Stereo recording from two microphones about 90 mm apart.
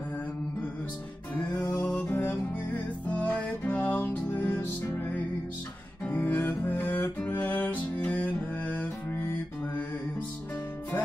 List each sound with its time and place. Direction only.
1.8 s music: 15° left (ahead or behind)